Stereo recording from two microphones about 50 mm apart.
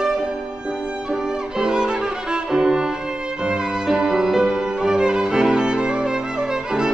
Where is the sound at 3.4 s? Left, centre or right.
Centre.